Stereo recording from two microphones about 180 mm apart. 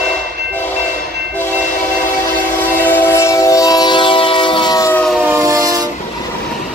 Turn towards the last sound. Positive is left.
turn(degrees=-20)  # may be behind; listen again after turning